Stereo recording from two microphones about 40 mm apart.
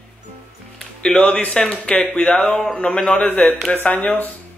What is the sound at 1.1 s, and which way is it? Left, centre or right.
A man's voice, left.